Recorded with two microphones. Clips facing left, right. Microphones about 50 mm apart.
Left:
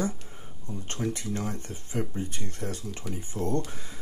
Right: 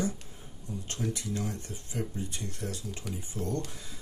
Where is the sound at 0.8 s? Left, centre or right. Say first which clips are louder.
Left 4 dB; left.